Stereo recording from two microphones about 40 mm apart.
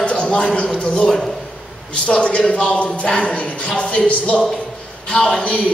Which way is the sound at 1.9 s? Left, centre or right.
Left.